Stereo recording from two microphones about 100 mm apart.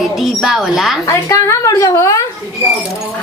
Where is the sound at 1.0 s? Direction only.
30° left (ahead or behind).